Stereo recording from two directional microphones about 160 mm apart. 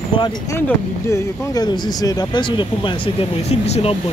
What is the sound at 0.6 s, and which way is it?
Speech, 15° left (ahead or behind).